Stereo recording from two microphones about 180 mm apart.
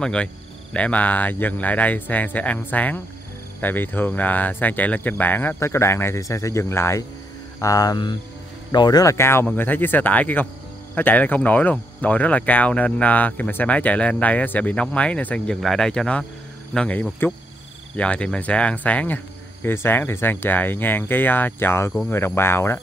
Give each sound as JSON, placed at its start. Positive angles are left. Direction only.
{"t": 0.0, "sound": "speech", "side_deg": 5}
{"t": 7.6, "sound": "cricket", "side_deg": 20}
{"t": 8.7, "sound": "speech", "side_deg": 20}